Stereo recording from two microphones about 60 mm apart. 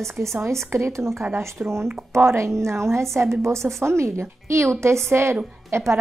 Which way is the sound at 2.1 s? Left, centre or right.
Right.